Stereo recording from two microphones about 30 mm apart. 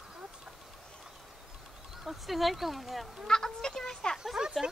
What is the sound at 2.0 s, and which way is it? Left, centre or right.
Speech, centre.